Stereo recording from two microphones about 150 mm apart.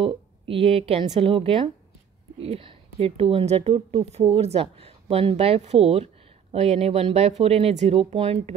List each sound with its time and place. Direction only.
0.0 s speech: 35° right (ahead or behind)